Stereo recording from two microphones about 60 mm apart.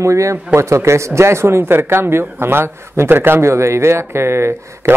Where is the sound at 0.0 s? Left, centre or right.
Right.